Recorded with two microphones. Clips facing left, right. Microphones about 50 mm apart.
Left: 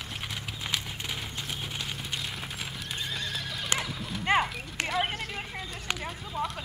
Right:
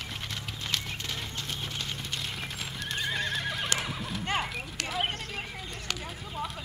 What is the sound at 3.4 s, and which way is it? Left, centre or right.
Neigh, right.